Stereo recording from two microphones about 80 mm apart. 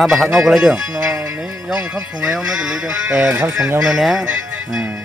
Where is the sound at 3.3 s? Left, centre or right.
Right.